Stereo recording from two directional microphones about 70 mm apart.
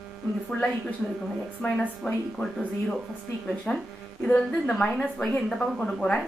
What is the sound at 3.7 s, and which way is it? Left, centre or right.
Speech, left.